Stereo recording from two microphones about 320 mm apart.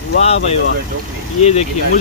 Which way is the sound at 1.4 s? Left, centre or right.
Centre.